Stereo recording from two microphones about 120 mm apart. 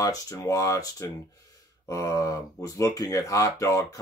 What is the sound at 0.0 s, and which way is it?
Speech, 30° left (ahead or behind).